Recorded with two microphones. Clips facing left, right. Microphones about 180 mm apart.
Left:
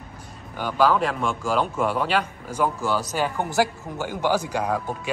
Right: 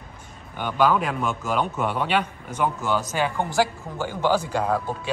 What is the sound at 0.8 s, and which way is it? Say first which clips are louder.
A man's voice: left 1 dB; 5° right (ahead or behind).